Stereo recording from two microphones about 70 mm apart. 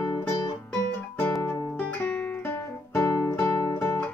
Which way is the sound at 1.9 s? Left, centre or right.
Centre.